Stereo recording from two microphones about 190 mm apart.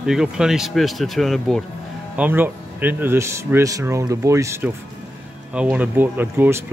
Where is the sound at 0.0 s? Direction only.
5° right (ahead or behind).